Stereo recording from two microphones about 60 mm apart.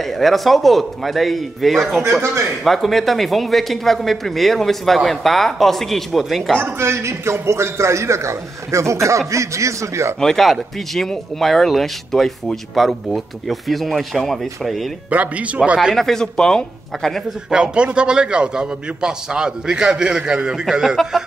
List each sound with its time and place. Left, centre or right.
0.0 s speech: centre
6.6 s a man's voice: right
10.2 s speech: centre
15.0 s a man's voice: right
15.9 s speech: centre
17.5 s a man's voice: centre